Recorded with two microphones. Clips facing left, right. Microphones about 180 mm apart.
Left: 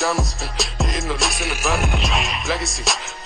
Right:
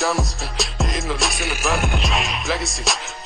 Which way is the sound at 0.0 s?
Centre (ahead or behind).